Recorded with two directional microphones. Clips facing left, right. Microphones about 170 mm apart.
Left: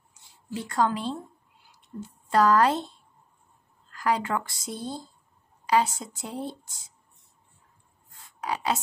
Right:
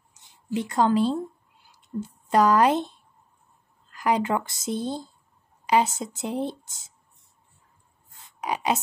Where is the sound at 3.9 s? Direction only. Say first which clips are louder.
Right 3 dB; 20° right (ahead or behind).